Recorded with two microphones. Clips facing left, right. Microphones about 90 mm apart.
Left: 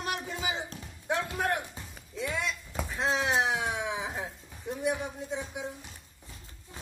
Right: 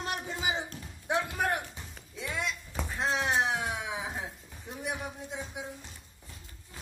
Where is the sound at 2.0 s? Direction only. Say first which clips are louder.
Left 3 dB; centre (ahead or behind).